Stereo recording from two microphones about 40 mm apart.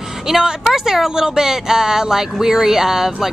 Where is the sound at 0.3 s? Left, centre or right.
Centre.